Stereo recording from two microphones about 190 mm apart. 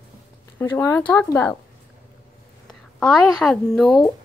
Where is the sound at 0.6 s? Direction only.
10° left (ahead or behind).